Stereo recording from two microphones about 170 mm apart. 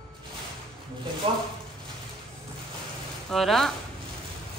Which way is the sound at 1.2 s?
30° right (ahead or behind).